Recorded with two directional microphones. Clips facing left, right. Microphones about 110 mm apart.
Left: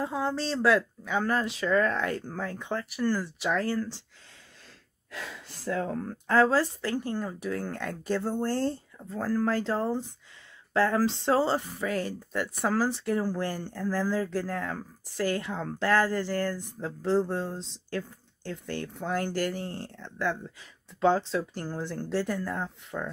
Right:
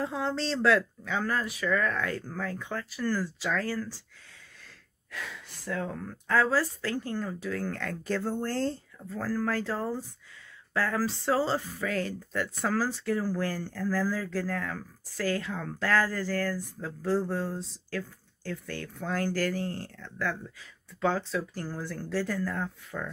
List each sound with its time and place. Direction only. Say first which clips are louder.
0.0 s speech: left 1 dB; 10° left (ahead or behind)
5.1 s speech: left 1 dB; 35° left (ahead or behind)